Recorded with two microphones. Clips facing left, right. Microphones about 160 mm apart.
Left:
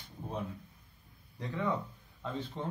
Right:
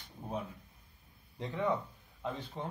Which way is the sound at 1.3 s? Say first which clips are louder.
Even; 20° right (ahead or behind).